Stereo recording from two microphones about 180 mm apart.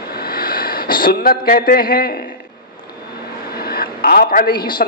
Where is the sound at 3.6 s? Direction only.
55° left (ahead or behind).